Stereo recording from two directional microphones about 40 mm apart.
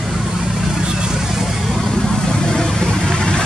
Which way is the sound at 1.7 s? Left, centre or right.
Centre.